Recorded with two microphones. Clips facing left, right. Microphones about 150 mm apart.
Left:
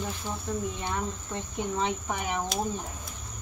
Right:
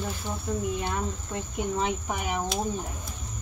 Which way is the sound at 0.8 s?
5° right (ahead or behind).